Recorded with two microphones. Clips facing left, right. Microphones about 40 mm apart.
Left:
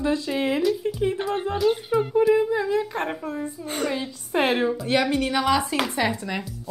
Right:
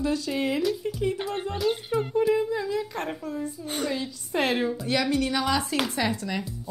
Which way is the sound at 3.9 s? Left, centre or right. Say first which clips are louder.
Left 3 dB; left.